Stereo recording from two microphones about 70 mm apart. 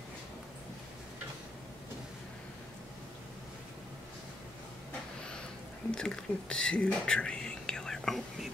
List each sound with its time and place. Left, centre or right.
5.9 s speech: centre